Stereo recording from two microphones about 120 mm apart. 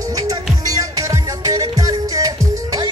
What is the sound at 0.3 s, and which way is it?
Music, 30° right (ahead or behind).